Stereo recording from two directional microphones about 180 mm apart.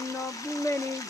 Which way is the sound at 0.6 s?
15° left (ahead or behind).